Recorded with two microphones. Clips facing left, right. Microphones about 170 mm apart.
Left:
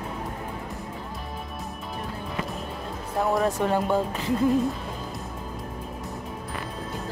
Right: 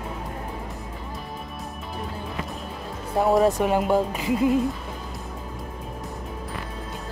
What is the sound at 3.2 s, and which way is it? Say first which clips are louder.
Speech: right 5 dB; 25° right (ahead or behind).